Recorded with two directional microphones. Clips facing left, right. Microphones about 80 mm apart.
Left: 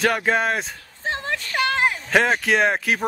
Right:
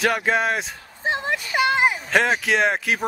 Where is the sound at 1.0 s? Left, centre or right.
Centre.